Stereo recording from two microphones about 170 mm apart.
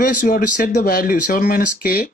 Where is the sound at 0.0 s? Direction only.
50° left (ahead or behind).